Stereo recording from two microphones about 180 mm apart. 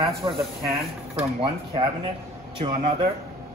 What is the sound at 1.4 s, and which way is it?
Speech, 30° right (ahead or behind).